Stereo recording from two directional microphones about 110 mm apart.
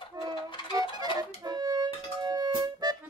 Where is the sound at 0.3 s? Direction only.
50° left (ahead or behind).